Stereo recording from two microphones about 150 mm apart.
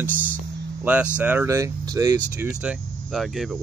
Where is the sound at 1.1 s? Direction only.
10° right (ahead or behind).